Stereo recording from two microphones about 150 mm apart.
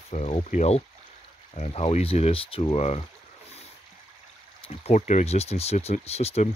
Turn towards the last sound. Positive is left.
turn(degrees=45)  # may be behind; listen again after turning